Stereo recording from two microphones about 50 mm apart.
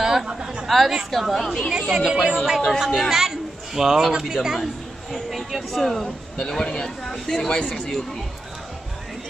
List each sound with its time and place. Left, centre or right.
0.0 s chatter: centre
0.7 s speech: centre
1.7 s a woman's voice: centre
2.0 s speech: centre
2.3 s a woman's voice: centre
2.8 s speech: centre
3.2 s a sound: centre
4.3 s a woman's voice: centre
5.1 s speech: centre
6.0 s speech: centre